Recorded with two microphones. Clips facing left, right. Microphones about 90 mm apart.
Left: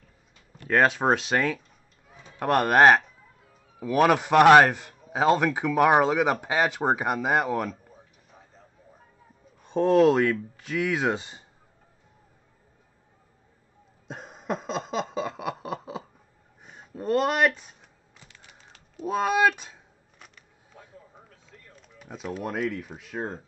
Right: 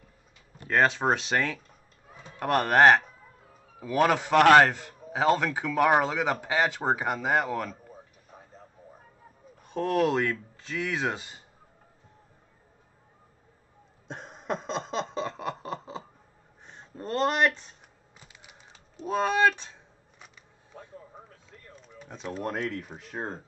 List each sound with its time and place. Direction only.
0.7 s a man's voice: 15° left (ahead or behind)
9.7 s speech: 25° left (ahead or behind)
14.0 s a sound: 5° left (ahead or behind)
16.6 s speech: 10° left (ahead or behind)
18.2 s typing: 15° right (ahead or behind)
18.9 s a man's voice: 10° left (ahead or behind)
21.8 s speech: 5° left (ahead or behind)